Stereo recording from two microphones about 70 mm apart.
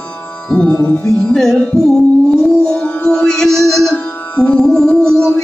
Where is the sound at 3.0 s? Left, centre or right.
Centre.